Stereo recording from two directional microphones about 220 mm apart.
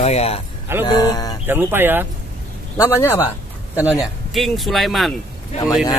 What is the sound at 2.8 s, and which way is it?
Speech, 15° left (ahead or behind).